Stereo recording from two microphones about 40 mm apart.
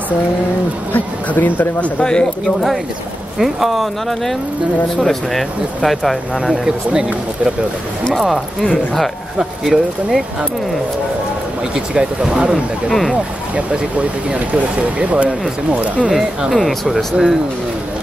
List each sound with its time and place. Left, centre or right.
0.9 s speech: left
2.4 s speech: centre
6.4 s speech: centre
8.1 s speech: centre
9.4 s speech: centre
11.7 s speech: right
16.1 s speech: centre